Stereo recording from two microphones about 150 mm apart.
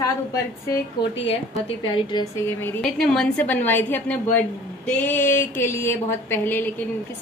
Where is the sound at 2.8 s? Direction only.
5° left (ahead or behind).